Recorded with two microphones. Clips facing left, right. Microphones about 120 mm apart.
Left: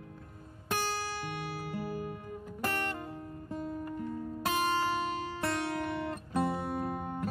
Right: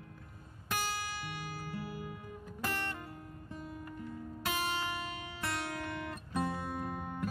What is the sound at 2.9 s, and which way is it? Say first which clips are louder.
Music: left 6 dB; 30° left (ahead or behind).